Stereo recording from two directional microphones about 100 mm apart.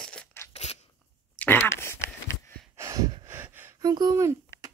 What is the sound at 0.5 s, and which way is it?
Crunch, 90° left.